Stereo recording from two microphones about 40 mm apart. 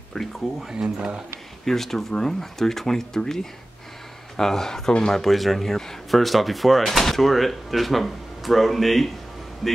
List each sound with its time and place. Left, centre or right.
0.2 s speech: centre
0.9 s speech: centre
1.6 s speech: centre
5.2 s speech: centre